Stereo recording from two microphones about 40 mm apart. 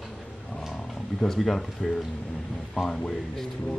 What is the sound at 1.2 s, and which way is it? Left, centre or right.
Speech, centre.